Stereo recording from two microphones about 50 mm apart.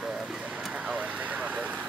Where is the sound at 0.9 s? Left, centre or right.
Right.